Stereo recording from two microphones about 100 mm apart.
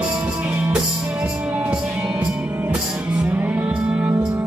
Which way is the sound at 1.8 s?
5° right (ahead or behind).